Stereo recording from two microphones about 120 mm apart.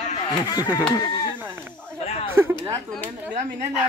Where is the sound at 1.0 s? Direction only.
35° left (ahead or behind).